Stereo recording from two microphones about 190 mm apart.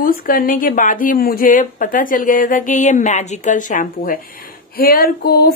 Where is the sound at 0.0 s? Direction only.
50° left (ahead or behind).